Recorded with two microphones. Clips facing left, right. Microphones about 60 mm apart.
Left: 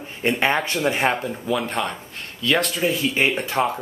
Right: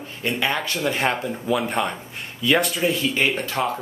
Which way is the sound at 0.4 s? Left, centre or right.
Left.